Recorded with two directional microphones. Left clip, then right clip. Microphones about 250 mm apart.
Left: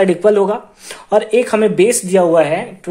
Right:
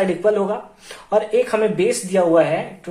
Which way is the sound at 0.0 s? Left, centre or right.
Left.